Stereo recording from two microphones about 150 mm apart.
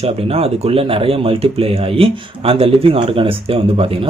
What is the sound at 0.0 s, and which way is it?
Speech, 40° right (ahead or behind).